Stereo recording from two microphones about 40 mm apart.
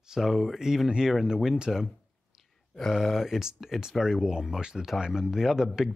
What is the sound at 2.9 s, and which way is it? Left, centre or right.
Speech, centre.